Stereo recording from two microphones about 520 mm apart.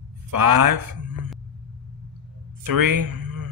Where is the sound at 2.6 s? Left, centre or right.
Right.